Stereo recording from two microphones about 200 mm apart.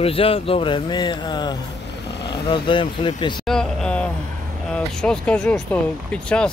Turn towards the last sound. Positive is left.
turn(degrees=5)  # may be behind; listen again after turning